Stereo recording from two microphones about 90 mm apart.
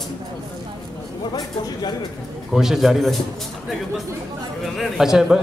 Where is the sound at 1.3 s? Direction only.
50° left (ahead or behind).